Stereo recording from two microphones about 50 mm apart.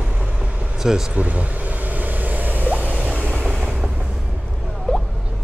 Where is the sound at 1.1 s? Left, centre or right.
Right.